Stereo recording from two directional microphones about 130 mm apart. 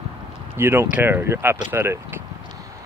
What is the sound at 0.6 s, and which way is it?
Speech, 15° right (ahead or behind).